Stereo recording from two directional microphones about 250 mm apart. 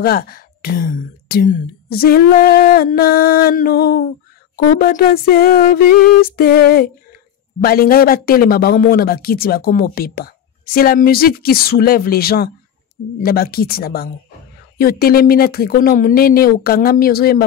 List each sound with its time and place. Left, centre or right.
0.0 s speech: left